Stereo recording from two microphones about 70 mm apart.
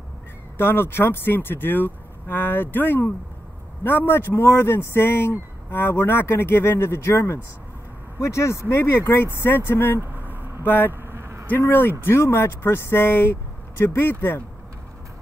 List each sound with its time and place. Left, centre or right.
0.6 s speech: left
10.9 s vehicle: right
11.7 s speech: left